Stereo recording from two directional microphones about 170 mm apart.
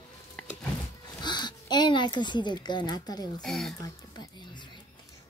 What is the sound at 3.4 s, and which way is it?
Speech, centre (ahead or behind).